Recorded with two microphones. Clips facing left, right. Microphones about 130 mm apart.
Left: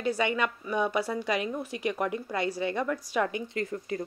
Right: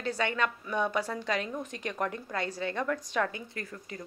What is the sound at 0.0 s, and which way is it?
A woman's voice, 10° left (ahead or behind).